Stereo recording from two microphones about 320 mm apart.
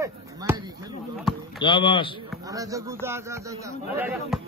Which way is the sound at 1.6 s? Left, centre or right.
Centre.